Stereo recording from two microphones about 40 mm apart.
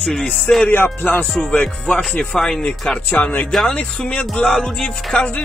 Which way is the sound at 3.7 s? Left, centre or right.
Left.